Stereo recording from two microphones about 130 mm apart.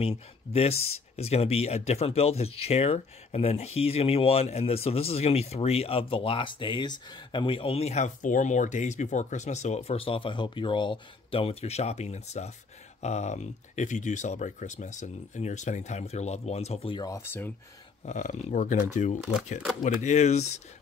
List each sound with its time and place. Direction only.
0.0 s speech: 50° left (ahead or behind)
16.9 s speech: 30° left (ahead or behind)
17.2 s speech: 20° left (ahead or behind)
18.0 s speech: 65° left (ahead or behind)
19.8 s speech: 65° left (ahead or behind)